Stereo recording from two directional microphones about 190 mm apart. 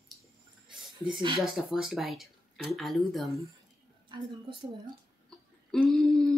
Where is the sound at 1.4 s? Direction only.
Centre (ahead or behind).